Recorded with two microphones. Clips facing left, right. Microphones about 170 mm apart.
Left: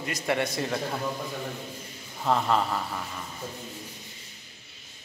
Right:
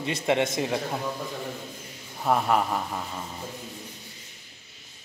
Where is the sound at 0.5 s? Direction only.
15° right (ahead or behind).